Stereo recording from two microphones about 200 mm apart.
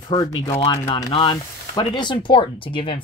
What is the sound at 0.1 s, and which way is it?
Speech, 25° left (ahead or behind).